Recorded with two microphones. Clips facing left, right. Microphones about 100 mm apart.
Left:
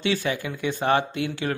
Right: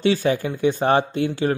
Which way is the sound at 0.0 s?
35° right (ahead or behind).